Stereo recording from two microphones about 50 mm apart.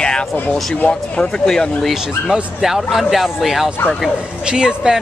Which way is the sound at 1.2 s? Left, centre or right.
Centre.